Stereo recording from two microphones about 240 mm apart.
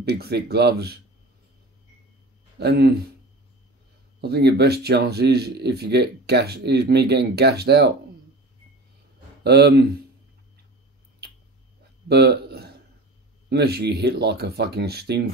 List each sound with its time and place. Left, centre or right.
0.0 s speech: right
2.6 s speech: right
4.2 s speech: right
9.4 s speech: right
12.1 s a sound: right
13.5 s speech: right